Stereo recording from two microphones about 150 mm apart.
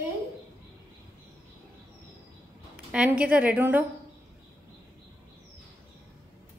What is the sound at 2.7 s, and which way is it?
A woman's voice, 10° right (ahead or behind).